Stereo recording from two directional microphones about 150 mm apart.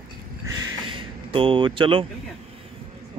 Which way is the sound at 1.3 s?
35° right (ahead or behind).